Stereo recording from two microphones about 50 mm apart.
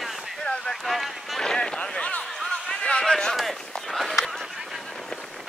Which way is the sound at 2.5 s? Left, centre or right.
Centre.